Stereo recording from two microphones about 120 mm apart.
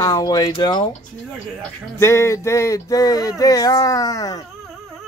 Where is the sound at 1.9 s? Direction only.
25° left (ahead or behind).